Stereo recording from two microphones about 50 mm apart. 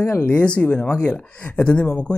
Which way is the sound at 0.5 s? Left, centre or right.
Left.